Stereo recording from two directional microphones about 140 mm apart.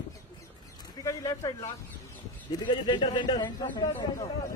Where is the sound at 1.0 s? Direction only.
25° left (ahead or behind).